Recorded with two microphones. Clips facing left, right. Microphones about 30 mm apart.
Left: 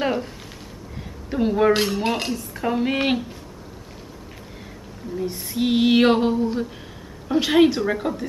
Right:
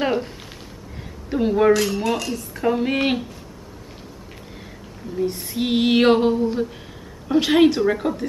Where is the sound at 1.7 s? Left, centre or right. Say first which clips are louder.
Right 2 dB; left.